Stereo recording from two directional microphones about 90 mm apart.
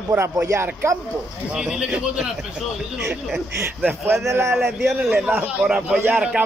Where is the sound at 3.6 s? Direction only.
25° right (ahead or behind).